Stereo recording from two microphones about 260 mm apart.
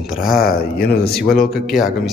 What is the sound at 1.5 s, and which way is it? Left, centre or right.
Speech, centre.